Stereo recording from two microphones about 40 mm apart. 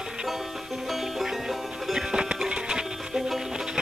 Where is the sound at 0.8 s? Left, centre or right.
Centre.